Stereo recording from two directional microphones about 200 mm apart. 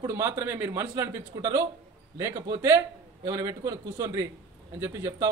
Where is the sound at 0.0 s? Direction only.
15° right (ahead or behind).